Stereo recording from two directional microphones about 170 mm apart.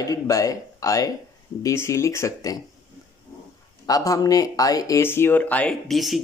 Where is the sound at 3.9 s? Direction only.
20° left (ahead or behind).